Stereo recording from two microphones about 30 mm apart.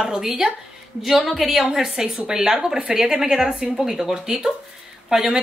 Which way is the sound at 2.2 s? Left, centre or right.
Right.